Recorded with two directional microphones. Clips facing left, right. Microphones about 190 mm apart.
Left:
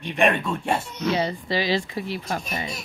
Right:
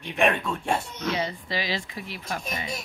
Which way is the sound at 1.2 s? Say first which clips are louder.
Left 5 dB; 30° left (ahead or behind).